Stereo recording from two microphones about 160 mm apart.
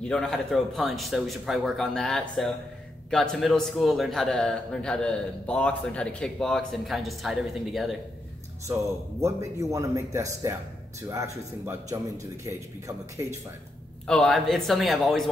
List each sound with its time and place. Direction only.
0.0 s a man's voice: 5° left (ahead or behind)
9.2 s speech: 20° right (ahead or behind)
14.0 s a man's voice: 5° left (ahead or behind)